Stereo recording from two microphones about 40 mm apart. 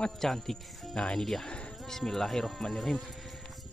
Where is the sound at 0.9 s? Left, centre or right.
Centre.